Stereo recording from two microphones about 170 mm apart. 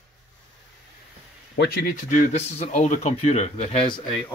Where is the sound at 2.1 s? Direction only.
45° left (ahead or behind).